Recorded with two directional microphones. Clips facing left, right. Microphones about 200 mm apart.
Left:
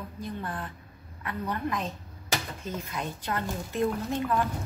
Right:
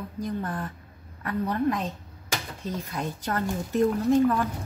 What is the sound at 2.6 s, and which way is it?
Speech, 40° right (ahead or behind).